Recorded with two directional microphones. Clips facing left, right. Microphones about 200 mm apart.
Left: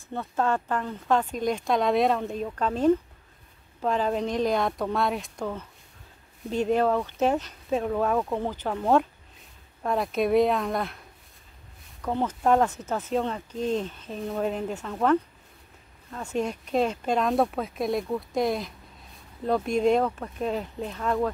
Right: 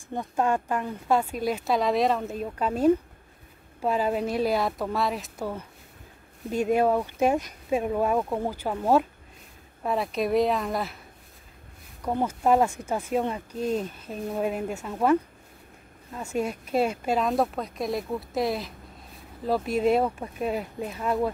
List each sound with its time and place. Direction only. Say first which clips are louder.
0.1 s speech: right 1 dB; 15° right (ahead or behind)
12.0 s speech: even; 10° right (ahead or behind)